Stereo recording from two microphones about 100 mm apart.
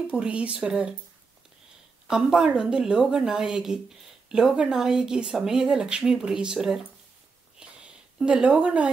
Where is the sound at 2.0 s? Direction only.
5° right (ahead or behind).